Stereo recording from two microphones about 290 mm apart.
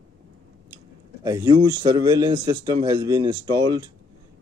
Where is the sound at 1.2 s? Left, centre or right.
Centre.